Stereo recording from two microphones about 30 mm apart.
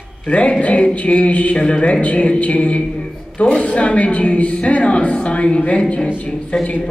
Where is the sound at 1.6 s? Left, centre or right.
Left.